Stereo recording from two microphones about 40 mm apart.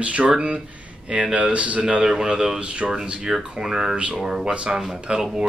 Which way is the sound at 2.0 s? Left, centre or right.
Centre.